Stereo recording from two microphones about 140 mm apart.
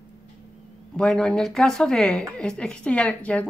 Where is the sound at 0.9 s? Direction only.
5° left (ahead or behind).